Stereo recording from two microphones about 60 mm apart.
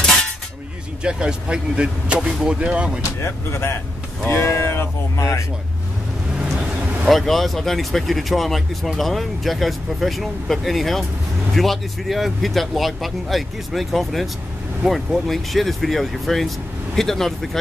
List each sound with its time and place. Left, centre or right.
0.0 s cutlery: centre
1.0 s speech: centre
3.2 s speech: left
4.5 s a sound: left
7.1 s speech: centre